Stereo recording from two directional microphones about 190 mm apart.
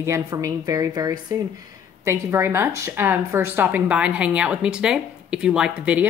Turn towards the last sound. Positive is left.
turn(degrees=-5)  # may be behind; listen again after turning